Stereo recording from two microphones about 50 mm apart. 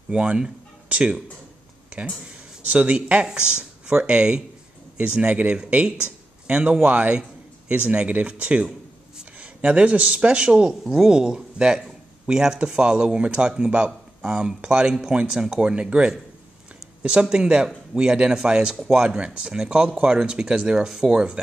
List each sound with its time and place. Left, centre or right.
0.1 s speech: right
2.7 s a man's voice: right; by 15.7 s centre
15.7 s speech: right